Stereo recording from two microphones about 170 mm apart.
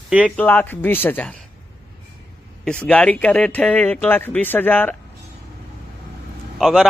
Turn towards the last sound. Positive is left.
turn(degrees=0)  # may be behind; listen again after turning